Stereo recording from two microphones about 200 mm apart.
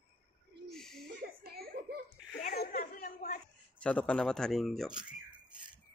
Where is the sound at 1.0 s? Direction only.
50° right (ahead or behind).